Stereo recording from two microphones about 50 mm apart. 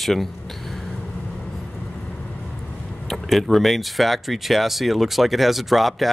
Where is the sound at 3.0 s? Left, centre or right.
Centre.